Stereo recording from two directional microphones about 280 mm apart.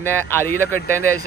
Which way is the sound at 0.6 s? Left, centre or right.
Right.